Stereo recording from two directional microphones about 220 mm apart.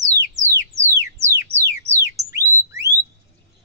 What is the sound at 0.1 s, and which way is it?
Music, 15° right (ahead or behind).